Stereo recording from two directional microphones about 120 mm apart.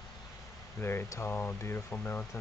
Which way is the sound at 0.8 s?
20° left (ahead or behind).